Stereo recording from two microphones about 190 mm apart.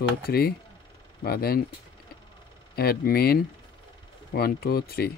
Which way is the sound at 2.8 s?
55° left (ahead or behind).